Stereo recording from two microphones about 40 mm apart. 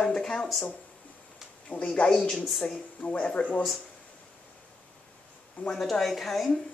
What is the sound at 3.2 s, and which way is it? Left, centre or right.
Speech, left.